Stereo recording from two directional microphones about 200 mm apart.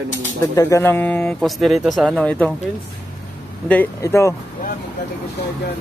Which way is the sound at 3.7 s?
10° left (ahead or behind).